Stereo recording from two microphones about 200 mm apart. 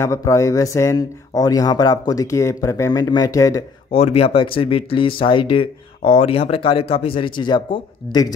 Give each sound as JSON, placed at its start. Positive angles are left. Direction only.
{"t": 0.0, "sound": "speech", "side_deg": 15}
{"t": 3.9, "sound": "speech", "side_deg": 30}